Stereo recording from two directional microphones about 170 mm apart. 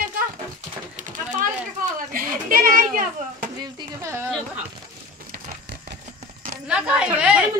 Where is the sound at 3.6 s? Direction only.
15° right (ahead or behind).